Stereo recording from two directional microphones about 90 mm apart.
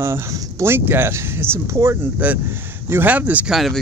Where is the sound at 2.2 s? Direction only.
20° right (ahead or behind).